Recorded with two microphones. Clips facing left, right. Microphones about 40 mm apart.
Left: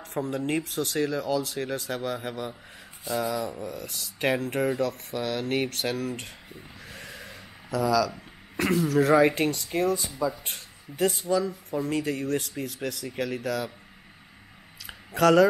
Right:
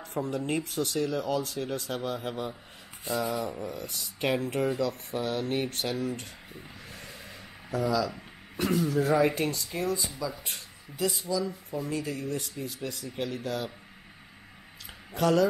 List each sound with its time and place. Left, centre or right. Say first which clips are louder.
0.0 s a sound: left 1 dB; left
0.5 s speech: left 2 dB; left
4.5 s speech: left 2 dB; left
6.9 s vehicle: left 6 dB; left
7.7 s speech: left 4 dB; left
8.5 s speech: left 4 dB; left
14.9 s a sound: left 5 dB; left